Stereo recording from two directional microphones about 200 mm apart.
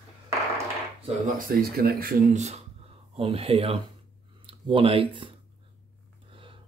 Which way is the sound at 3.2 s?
30° right (ahead or behind).